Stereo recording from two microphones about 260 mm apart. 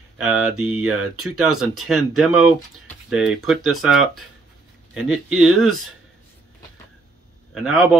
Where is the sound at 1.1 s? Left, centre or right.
Right.